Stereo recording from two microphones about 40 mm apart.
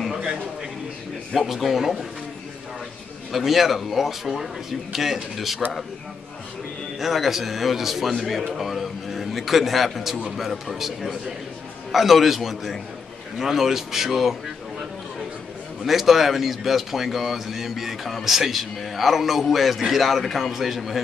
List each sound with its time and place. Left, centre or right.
0.1 s a sound: centre
1.3 s a man's voice: centre
3.3 s a man's voice: centre
7.0 s a man's voice: centre
15.8 s a man's voice: centre